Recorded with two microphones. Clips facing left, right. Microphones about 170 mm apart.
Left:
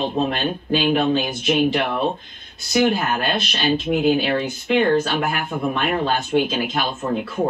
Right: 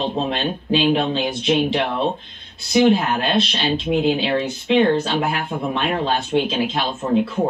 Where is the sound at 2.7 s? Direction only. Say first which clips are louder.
Right 3 dB; 25° right (ahead or behind).